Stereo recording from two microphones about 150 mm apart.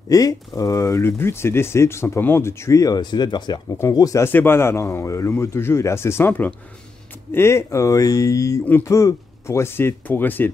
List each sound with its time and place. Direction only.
0.1 s speech: 25° left (ahead or behind)